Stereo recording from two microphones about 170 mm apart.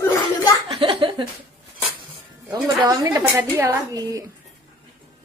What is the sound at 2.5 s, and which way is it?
A woman's voice, 25° right (ahead or behind).